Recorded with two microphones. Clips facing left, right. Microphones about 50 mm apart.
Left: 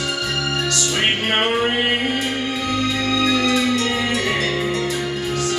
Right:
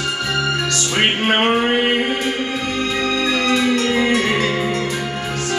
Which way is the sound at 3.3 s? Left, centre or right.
Right.